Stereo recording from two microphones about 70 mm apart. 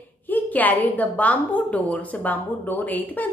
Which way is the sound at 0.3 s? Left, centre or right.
Left.